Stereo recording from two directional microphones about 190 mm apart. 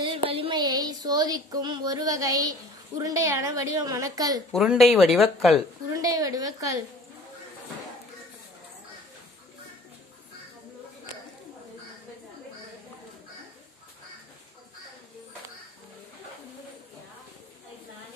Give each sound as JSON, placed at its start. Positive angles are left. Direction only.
{"t": 0.0, "sound": "a woman's voice", "side_deg": -30}
{"t": 4.5, "sound": "speech", "side_deg": 0}
{"t": 5.9, "sound": "a woman's voice", "side_deg": -20}